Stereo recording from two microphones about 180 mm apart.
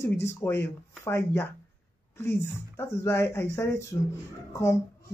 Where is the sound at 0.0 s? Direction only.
15° left (ahead or behind).